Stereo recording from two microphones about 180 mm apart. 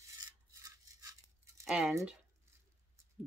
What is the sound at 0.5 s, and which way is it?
Toothbrush, 20° right (ahead or behind).